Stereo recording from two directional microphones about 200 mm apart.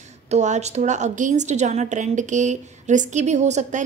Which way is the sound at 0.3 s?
35° right (ahead or behind).